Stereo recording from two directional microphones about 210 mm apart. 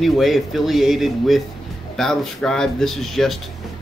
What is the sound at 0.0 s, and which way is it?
Speech, centre (ahead or behind).